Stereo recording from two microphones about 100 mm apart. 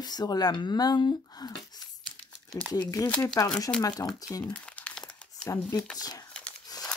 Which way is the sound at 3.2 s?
35° left (ahead or behind).